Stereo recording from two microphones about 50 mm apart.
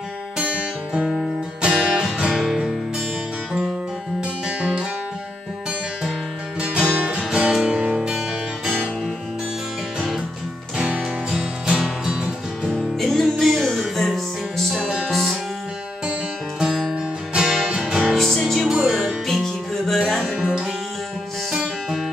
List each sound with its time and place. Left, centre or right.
0.4 s music: right
4.2 s music: centre
6.6 s music: centre
11.2 s music: centre
12.7 s music: centre
17.5 s music: centre
18.1 s music: centre
18.7 s music: centre
19.2 s music: centre
20.3 s music: right